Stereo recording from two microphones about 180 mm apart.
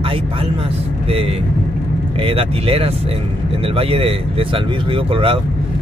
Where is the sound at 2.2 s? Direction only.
30° right (ahead or behind).